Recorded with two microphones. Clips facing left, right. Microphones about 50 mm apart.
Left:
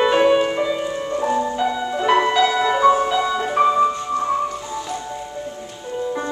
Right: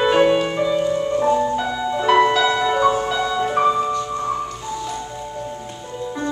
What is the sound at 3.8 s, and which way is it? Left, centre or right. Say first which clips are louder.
Music: left 3 dB; centre.